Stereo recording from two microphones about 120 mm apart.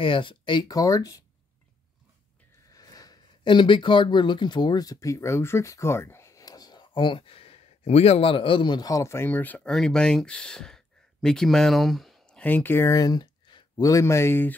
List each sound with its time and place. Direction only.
0.0 s speech: 45° left (ahead or behind); by 1.2 s 30° left (ahead or behind)
2.7 s speech: 30° left (ahead or behind); by 9.7 s 15° left (ahead or behind)
9.7 s speech: 5° left (ahead or behind); by 14.5 s 20° left (ahead or behind)